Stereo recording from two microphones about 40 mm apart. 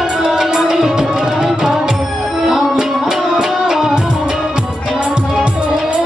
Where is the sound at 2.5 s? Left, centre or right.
Centre.